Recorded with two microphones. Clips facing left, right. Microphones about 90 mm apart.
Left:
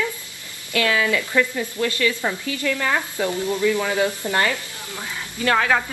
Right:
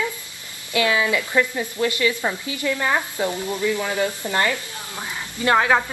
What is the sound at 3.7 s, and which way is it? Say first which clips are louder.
Speech: left 2 dB; 20° left (ahead or behind).